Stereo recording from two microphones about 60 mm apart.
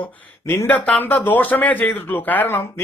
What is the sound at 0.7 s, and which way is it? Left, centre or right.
Speech, left.